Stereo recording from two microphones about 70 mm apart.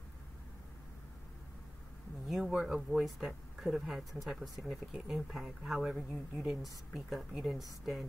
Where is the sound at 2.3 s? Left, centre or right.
Centre.